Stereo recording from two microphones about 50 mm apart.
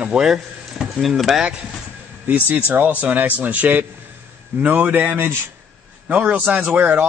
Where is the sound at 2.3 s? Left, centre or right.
Right.